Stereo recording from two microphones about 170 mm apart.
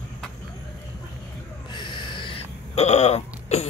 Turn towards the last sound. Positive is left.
turn(degrees=40)  # may be behind; listen again after turning